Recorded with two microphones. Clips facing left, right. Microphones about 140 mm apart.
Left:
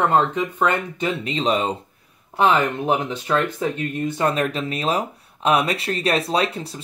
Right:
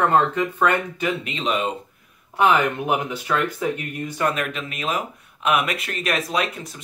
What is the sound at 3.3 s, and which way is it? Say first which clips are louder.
Speech: left 1 dB; 30° left (ahead or behind).